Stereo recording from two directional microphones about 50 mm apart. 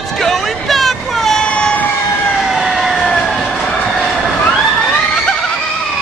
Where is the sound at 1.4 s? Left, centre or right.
Centre.